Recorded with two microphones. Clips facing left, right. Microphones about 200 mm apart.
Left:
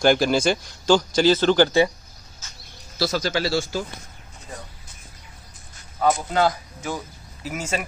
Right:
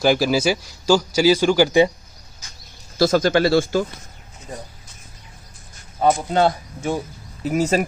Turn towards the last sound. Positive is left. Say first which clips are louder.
# right 9 dB
turn(degrees=-35)  # may be behind; listen again after turning